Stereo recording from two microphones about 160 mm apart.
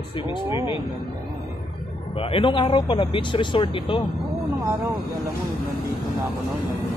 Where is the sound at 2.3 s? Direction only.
35° left (ahead or behind).